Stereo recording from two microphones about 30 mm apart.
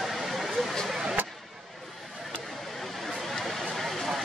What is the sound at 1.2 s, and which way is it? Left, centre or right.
Vehicle, right.